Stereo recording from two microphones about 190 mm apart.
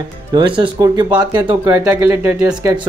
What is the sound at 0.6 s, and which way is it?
A man's voice, 20° right (ahead or behind).